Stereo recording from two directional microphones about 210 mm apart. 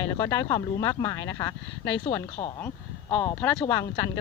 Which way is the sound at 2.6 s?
5° left (ahead or behind).